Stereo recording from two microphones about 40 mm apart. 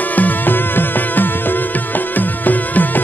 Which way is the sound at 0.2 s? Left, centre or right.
Left.